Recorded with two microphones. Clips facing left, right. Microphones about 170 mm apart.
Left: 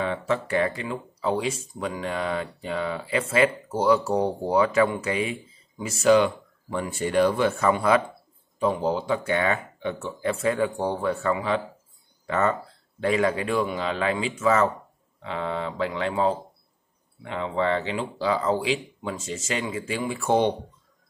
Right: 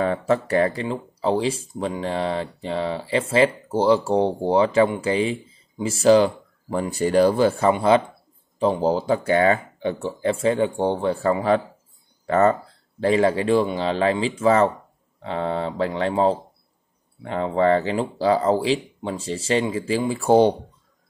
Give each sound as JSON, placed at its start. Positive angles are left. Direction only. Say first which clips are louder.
{"t": 0.0, "sound": "speech", "louder": "right 5 dB", "side_deg": -40}